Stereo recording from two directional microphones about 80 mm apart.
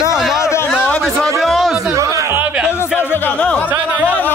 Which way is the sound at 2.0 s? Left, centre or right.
Right.